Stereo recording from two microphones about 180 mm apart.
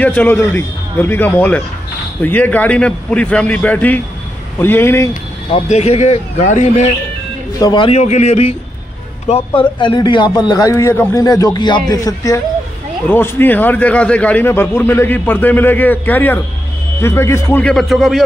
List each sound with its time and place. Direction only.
0.0 s a man's voice: 10° left (ahead or behind)
5.5 s speech: 35° left (ahead or behind)
7.5 s speech: 25° left (ahead or behind)
8.0 s a man's voice: 40° left (ahead or behind); by 18.2 s centre (ahead or behind)